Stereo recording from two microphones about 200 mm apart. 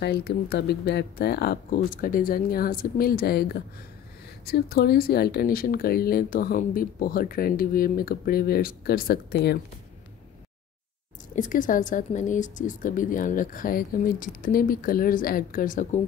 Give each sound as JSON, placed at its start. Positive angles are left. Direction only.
{"t": 0.0, "sound": "speech", "side_deg": 50}
{"t": 11.3, "sound": "speech", "side_deg": 40}